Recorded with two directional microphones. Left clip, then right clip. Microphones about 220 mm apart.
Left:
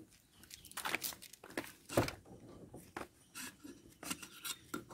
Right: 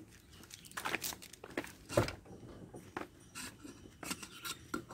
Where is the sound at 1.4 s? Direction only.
40° left (ahead or behind).